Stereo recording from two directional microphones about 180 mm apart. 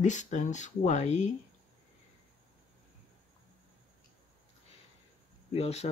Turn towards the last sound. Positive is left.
turn(degrees=35)  # may be behind; listen again after turning